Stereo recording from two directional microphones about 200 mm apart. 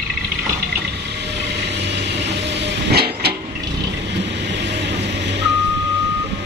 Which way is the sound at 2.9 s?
55° right (ahead or behind).